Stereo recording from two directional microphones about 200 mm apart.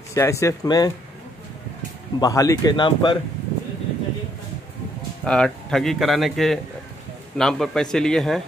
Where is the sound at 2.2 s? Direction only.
15° left (ahead or behind).